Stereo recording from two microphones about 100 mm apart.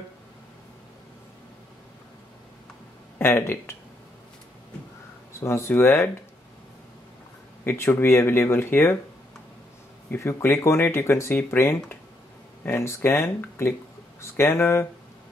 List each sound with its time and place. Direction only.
3.2 s speech: 25° left (ahead or behind)
5.4 s speech: 25° left (ahead or behind)
7.6 s speech: 25° left (ahead or behind)
10.1 s speech: 25° left (ahead or behind)